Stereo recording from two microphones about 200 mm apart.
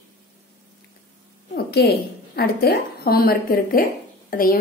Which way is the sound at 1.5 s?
55° left (ahead or behind).